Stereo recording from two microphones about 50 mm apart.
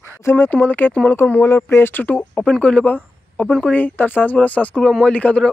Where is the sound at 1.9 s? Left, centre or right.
Left.